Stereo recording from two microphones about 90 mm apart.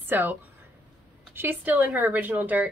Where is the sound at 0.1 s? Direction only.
25° right (ahead or behind).